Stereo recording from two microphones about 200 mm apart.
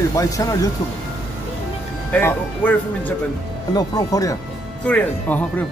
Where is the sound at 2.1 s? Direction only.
10° left (ahead or behind).